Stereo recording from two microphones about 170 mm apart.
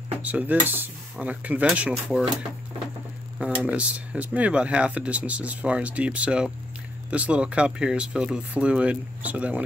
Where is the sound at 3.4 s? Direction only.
10° right (ahead or behind).